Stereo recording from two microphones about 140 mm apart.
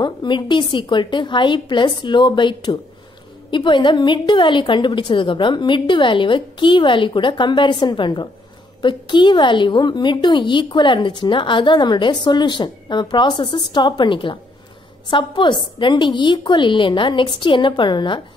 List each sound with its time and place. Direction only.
0.0 s a woman's voice: 35° left (ahead or behind)